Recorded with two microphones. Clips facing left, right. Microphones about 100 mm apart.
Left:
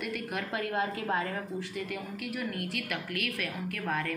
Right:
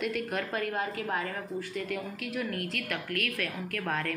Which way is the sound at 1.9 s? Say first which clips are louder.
Right 2 dB; 5° left (ahead or behind).